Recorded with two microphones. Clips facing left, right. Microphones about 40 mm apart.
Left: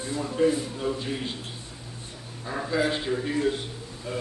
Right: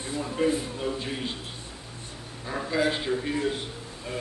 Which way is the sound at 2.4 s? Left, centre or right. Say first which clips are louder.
Even; centre.